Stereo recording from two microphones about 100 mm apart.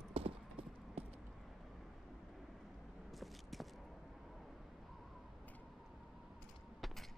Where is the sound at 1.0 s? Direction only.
75° right (ahead or behind).